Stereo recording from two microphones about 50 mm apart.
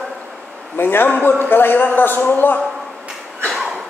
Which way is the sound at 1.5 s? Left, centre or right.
Left.